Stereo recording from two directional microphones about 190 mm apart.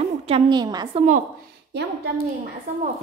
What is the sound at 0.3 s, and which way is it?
Speech, 20° right (ahead or behind).